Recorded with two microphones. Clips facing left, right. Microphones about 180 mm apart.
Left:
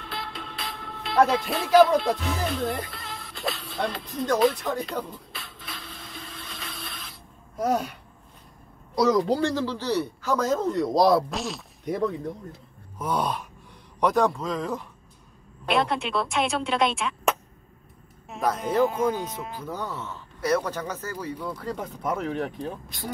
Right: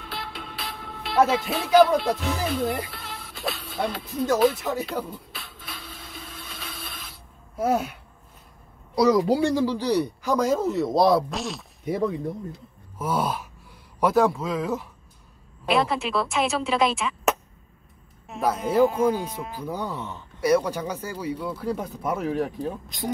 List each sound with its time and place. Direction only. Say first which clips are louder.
0.0 s music: even; centre (ahead or behind)
8.9 s speech: right 2 dB; 5° right (ahead or behind)
22.8 s speech: right 5 dB; 20° right (ahead or behind)